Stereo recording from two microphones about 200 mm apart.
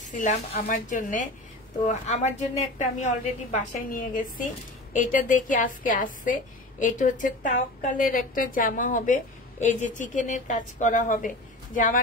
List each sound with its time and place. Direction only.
0.0 s a woman's voice: 40° left (ahead or behind)